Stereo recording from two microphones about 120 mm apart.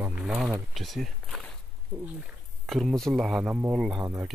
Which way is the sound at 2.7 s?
Centre (ahead or behind).